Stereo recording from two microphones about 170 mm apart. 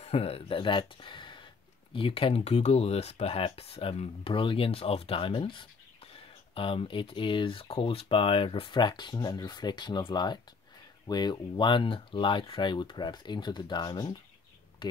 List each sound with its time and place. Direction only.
0.0 s speech: 35° left (ahead or behind)